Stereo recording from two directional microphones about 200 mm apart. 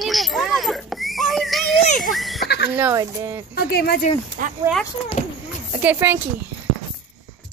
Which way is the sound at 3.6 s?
50° left (ahead or behind).